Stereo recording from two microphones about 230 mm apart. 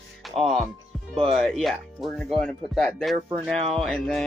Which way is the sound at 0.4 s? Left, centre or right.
Centre.